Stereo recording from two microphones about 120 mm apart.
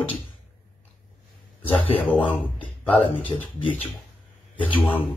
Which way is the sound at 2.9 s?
45° left (ahead or behind).